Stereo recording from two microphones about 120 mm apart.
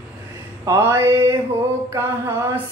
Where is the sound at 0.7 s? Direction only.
20° right (ahead or behind).